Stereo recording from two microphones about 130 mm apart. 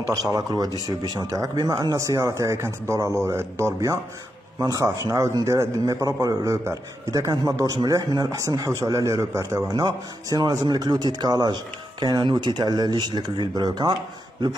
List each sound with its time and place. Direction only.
0.3 s a man's voice: 25° right (ahead or behind)